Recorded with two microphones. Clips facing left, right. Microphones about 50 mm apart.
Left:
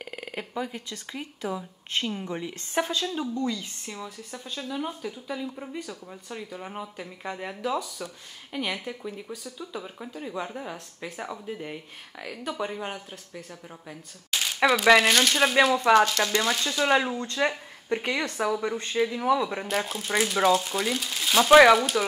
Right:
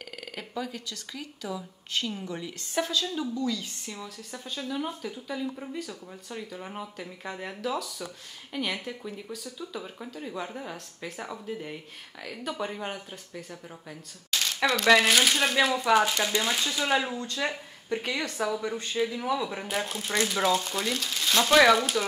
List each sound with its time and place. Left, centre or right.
0.1 s speech: left
3.5 s speech: centre
4.5 s speech: centre
14.3 s speech: centre
15.9 s speech: centre
16.8 s speech: centre
17.1 s speech: left; by 19.7 s centre
19.7 s speech: centre